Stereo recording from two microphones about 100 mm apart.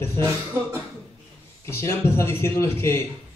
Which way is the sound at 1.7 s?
25° left (ahead or behind).